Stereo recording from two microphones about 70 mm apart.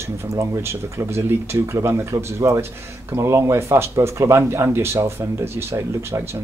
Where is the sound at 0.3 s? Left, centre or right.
Right.